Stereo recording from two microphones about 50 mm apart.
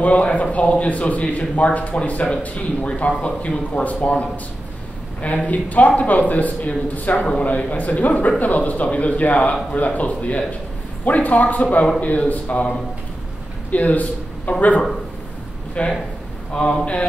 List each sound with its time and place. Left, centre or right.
0.0 s a man's voice: left
13.7 s a sound: left
15.8 s a man's voice: left